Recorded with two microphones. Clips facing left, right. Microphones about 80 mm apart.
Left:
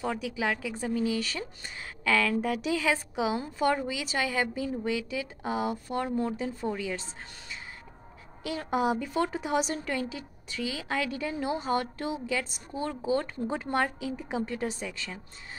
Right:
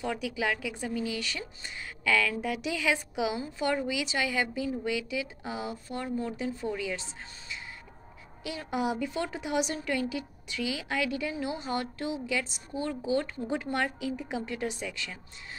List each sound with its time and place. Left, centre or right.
0.0 s a woman's voice: left
8.5 s a woman's voice: left